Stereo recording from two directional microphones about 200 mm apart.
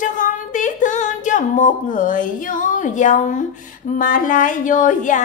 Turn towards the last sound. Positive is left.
turn(degrees=40)  # may be behind; listen again after turning